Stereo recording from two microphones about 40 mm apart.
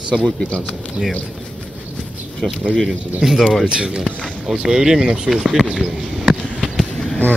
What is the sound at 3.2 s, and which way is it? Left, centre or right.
Speech, centre.